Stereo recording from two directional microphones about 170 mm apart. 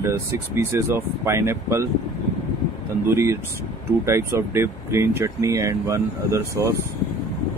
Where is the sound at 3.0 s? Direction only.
15° right (ahead or behind).